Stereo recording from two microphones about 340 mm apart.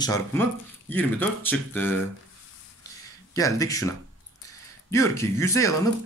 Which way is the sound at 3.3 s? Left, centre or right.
Centre.